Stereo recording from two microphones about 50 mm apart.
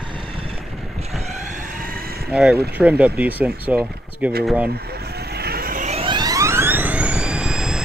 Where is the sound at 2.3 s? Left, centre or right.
Centre.